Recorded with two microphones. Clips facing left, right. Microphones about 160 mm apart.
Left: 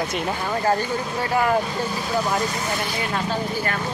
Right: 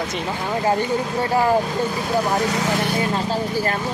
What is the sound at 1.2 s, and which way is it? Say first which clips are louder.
Speech: right 2 dB; 30° right (ahead or behind).